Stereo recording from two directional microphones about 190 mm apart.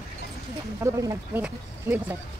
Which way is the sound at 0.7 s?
15° right (ahead or behind).